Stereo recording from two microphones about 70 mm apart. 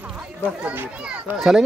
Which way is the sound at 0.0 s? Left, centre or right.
Centre.